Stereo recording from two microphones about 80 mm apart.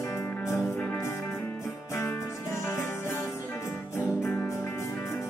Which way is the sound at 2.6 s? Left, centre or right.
Left.